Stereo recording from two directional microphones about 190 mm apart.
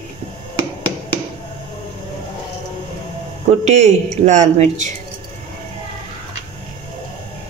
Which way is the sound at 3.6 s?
35° right (ahead or behind).